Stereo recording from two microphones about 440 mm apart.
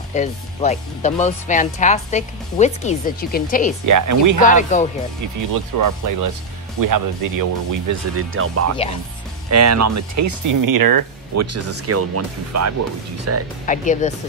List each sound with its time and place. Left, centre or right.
0.1 s speech: centre
3.8 s speech: right
4.4 s speech: centre
5.5 s speech: right
8.3 s speech: right
11.3 s speech: right
13.7 s speech: centre